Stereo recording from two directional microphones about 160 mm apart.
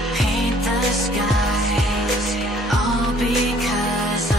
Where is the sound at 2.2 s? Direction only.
Centre (ahead or behind).